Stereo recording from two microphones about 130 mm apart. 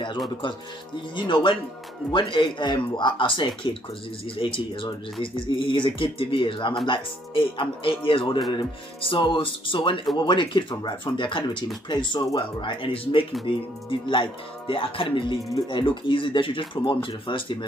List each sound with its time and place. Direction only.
1.1 s speech: 40° left (ahead or behind)